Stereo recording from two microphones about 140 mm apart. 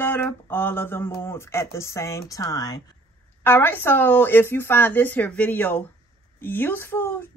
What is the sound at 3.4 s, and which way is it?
Speech, 15° left (ahead or behind).